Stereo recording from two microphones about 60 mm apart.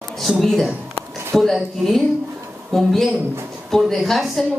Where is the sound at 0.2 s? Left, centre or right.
Centre.